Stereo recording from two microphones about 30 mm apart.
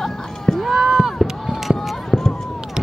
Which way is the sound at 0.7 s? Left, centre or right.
Centre.